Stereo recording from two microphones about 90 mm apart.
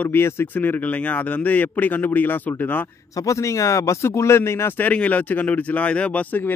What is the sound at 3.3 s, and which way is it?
Speech, 35° left (ahead or behind).